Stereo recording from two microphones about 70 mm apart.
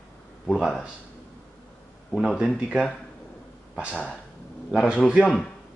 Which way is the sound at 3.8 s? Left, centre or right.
Centre.